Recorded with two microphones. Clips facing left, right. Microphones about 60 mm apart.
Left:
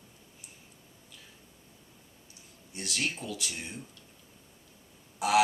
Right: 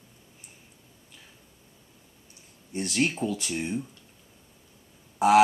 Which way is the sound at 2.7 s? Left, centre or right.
Right.